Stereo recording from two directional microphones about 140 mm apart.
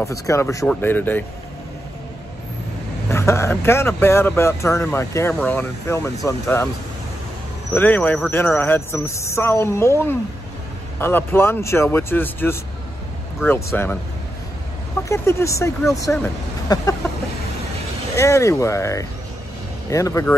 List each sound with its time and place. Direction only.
0.0 s speech: 20° left (ahead or behind)
3.1 s speech: 20° left (ahead or behind)
7.7 s speech: 10° left (ahead or behind)
15.0 s speech: 20° left (ahead or behind)
16.6 s a sound: 25° left (ahead or behind)
18.1 s speech: 20° left (ahead or behind)